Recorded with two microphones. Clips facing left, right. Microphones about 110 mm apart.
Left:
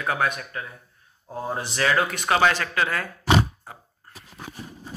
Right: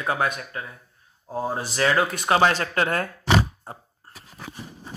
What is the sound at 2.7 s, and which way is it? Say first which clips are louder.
Speech: right 2 dB; 45° right (ahead or behind).